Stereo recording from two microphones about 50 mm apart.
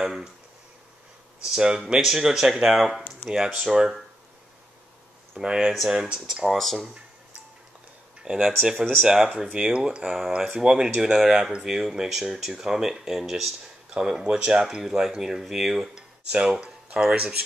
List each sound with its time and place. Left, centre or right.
0.0 s a sound: centre
1.4 s speech: centre
5.4 s speech: centre
6.5 s speech: centre
8.2 s speech: centre
9.5 s speech: right